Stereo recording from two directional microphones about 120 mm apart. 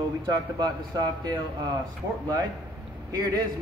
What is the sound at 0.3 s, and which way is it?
Speech, 35° right (ahead or behind).